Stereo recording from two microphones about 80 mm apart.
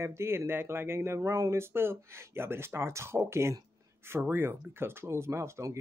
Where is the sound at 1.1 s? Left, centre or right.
Right.